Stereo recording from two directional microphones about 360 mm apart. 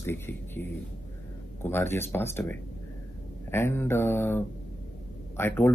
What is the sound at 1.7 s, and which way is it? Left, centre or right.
Speech, centre.